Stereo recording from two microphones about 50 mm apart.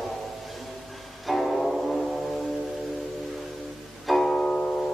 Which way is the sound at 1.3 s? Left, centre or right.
Centre.